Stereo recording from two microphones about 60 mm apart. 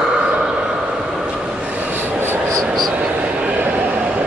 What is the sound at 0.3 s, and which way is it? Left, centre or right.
Vehicle, centre.